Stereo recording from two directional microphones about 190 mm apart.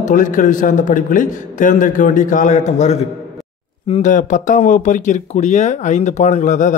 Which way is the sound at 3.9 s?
40° left (ahead or behind).